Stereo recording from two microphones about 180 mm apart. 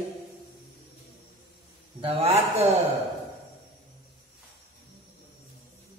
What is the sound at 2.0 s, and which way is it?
Speech, 35° right (ahead or behind).